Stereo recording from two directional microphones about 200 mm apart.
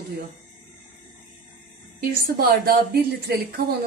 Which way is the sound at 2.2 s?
50° right (ahead or behind).